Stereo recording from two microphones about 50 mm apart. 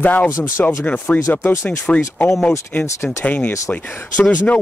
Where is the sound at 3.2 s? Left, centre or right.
Left.